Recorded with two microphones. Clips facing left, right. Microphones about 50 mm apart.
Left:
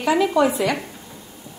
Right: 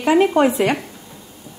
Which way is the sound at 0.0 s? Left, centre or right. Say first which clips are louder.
Right 4 dB; right.